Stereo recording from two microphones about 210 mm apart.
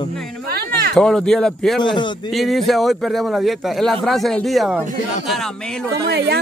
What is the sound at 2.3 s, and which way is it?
A man's voice, centre (ahead or behind).